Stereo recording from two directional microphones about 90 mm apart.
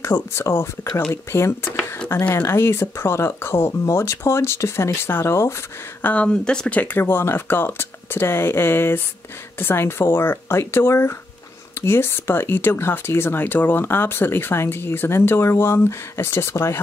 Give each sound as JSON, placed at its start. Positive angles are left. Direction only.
{"t": 0.0, "sound": "speech", "side_deg": 30}
{"t": 6.0, "sound": "speech", "side_deg": 15}